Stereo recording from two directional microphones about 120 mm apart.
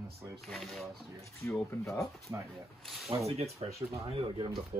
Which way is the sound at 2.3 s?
30° right (ahead or behind).